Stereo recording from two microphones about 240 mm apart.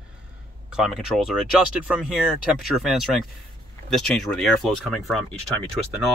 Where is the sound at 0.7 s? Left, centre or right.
Centre.